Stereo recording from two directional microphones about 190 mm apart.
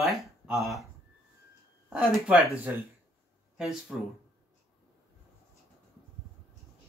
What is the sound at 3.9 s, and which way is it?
Speech, centre (ahead or behind).